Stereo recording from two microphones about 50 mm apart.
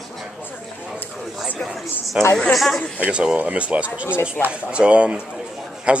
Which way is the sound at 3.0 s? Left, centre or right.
Right.